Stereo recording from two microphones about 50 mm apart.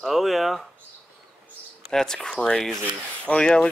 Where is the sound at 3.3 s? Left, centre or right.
Left.